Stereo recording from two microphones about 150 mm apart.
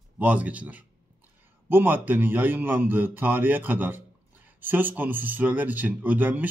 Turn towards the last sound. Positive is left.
turn(degrees=-10)  # may be behind; listen again after turning